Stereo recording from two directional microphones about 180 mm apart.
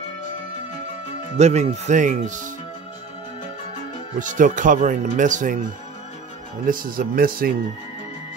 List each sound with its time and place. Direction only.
1.4 s speech: 40° right (ahead or behind)
4.2 s speech: 45° right (ahead or behind)
6.6 s speech: 50° right (ahead or behind)